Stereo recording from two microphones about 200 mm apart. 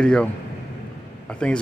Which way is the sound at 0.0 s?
5° left (ahead or behind).